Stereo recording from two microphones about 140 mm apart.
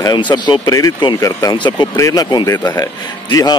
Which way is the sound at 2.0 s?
20° left (ahead or behind).